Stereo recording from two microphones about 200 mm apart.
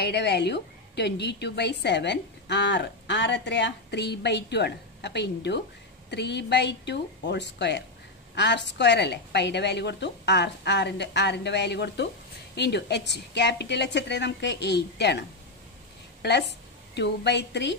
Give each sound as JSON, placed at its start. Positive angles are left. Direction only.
{"t": 0.0, "sound": "a woman's voice", "side_deg": 60}